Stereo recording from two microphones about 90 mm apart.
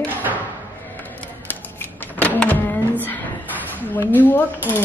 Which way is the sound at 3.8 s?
20° left (ahead or behind).